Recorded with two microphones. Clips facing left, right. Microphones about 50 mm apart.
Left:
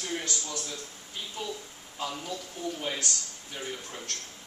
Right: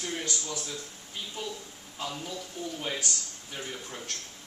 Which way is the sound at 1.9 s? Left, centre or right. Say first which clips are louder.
Left 1 dB; centre.